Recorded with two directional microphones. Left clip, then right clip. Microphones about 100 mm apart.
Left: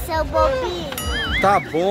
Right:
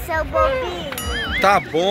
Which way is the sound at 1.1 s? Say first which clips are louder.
Right 1 dB; centre (ahead or behind).